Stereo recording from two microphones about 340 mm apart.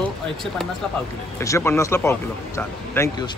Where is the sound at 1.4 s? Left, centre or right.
Centre.